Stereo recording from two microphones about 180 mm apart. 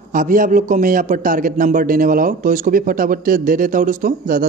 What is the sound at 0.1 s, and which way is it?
A man's voice, 50° right (ahead or behind).